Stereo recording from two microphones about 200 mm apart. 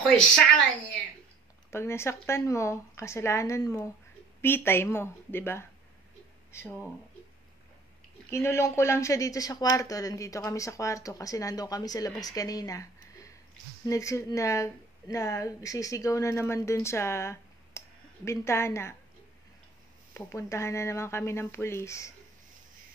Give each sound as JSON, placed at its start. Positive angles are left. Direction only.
{"t": 0.0, "sound": "a woman's voice", "side_deg": 5}
{"t": 1.7, "sound": "speech", "side_deg": 15}
{"t": 8.3, "sound": "speech", "side_deg": 15}
{"t": 20.2, "sound": "speech", "side_deg": 15}